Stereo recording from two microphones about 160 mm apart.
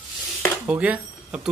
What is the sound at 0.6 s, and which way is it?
Speech, 10° right (ahead or behind).